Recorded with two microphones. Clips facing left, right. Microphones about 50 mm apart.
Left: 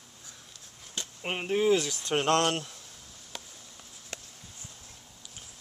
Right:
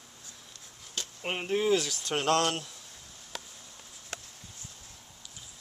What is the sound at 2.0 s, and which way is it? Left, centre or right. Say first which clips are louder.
Speech: left 1 dB; left.